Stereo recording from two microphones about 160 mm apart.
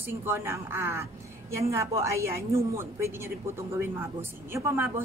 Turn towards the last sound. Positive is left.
turn(degrees=-15)  # may be behind; listen again after turning